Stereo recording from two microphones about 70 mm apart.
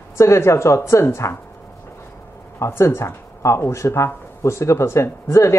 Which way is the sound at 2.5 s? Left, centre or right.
Left.